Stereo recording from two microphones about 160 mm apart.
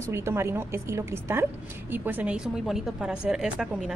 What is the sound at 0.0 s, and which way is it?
A woman's voice, 15° right (ahead or behind).